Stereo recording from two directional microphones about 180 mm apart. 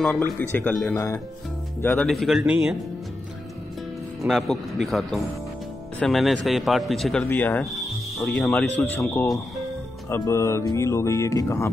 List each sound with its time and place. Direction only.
0.0 s speech: 10° left (ahead or behind)
2.0 s speech: centre (ahead or behind)
4.3 s speech: centre (ahead or behind)